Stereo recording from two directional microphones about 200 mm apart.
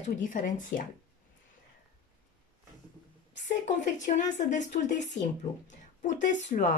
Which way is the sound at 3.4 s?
40° left (ahead or behind).